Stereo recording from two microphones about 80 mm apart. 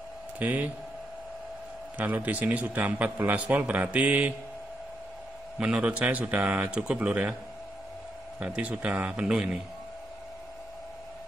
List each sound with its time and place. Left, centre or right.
0.4 s a man's voice: centre
2.0 s a man's voice: right
5.6 s speech: centre
8.4 s speech: centre